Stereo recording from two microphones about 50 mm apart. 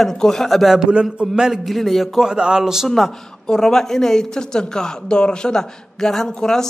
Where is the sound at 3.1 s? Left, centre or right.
Centre.